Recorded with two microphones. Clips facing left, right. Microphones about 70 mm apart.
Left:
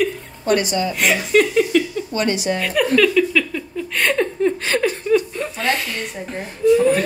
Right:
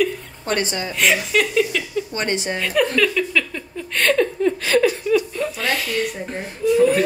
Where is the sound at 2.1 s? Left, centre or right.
Right.